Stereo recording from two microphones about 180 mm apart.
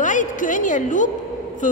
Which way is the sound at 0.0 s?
45° left (ahead or behind).